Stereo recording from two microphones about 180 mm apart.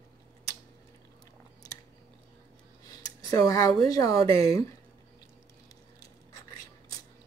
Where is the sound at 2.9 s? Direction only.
20° left (ahead or behind).